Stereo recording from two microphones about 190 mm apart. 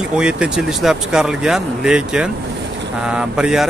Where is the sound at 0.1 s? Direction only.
5° right (ahead or behind).